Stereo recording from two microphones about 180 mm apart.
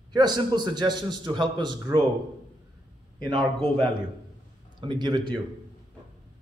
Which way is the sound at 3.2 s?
25° right (ahead or behind).